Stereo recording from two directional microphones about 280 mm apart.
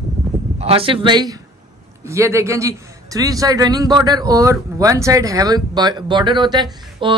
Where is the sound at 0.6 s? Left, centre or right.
Right.